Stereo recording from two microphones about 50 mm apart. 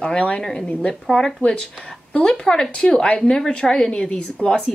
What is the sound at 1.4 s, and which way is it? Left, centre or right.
A woman's voice, centre.